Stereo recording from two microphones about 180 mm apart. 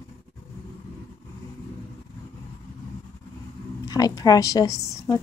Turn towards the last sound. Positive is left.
turn(degrees=15)  # may be behind; listen again after turning